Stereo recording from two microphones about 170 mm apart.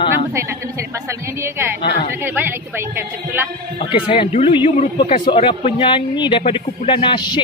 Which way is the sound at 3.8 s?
30° left (ahead or behind).